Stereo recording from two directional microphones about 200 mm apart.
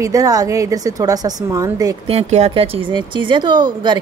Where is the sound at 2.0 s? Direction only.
35° right (ahead or behind).